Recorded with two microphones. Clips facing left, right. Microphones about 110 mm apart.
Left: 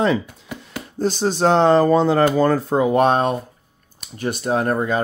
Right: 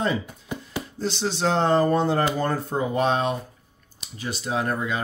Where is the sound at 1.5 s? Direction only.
90° left.